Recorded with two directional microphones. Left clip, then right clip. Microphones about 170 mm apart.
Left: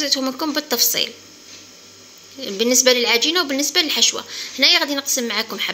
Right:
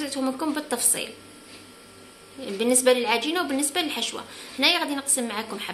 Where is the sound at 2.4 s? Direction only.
20° left (ahead or behind).